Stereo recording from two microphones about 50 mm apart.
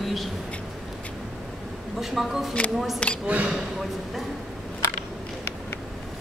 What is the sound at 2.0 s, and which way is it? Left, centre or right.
Speech, centre.